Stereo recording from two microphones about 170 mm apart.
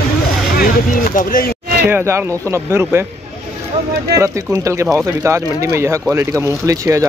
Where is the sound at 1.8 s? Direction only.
15° right (ahead or behind).